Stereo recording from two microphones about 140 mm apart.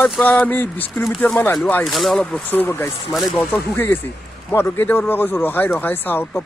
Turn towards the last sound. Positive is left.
turn(degrees=15)  # may be behind; listen again after turning